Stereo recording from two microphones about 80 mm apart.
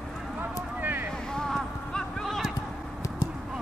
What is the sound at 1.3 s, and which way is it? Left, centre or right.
Clip-clop, centre.